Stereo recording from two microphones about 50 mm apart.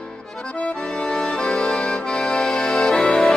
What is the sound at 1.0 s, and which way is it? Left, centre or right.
Accordion, centre.